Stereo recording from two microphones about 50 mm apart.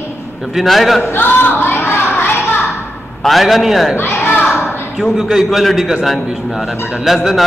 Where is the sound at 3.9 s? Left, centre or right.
Left.